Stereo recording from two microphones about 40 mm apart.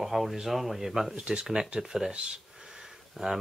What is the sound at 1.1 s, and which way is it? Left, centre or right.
Speech, right.